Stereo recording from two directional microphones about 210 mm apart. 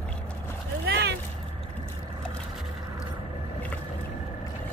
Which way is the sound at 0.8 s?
50° right (ahead or behind).